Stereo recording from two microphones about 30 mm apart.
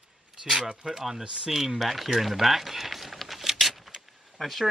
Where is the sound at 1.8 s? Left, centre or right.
Centre.